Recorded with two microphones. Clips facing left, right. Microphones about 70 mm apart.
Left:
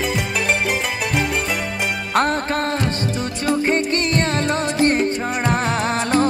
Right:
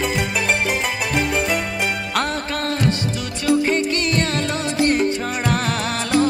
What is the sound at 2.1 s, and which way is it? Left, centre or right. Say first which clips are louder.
Music: left 4 dB; left.